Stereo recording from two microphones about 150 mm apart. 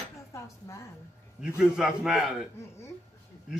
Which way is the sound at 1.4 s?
5° right (ahead or behind).